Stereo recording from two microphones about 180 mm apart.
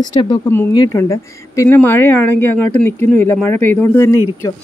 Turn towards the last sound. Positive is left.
turn(degrees=15)  # may be behind; listen again after turning